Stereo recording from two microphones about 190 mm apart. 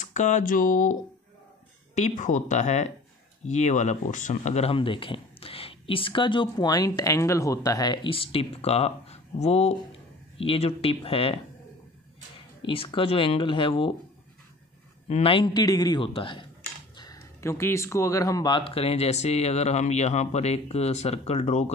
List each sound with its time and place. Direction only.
0.0 s speech: 40° left (ahead or behind)
2.0 s speech: 40° left (ahead or behind)
12.6 s speech: 30° left (ahead or behind)
15.0 s speech: 30° left (ahead or behind)